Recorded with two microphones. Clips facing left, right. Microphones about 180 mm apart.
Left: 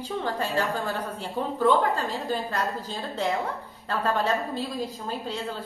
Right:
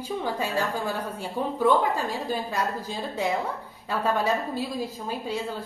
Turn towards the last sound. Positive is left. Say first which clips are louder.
# right 1 dB
turn(degrees=-10)  # may be behind; listen again after turning